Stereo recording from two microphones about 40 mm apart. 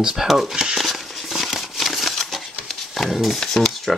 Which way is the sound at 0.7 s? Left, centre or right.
Centre.